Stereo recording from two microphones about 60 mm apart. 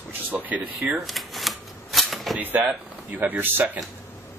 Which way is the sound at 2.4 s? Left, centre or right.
Right.